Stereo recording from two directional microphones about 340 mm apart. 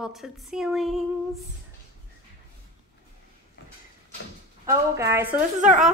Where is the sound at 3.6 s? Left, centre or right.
Left.